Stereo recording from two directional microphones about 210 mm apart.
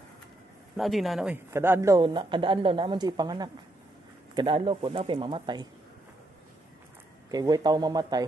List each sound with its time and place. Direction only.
0.7 s a man's voice: centre (ahead or behind); by 5.7 s 20° right (ahead or behind)
7.2 s a man's voice: 20° right (ahead or behind)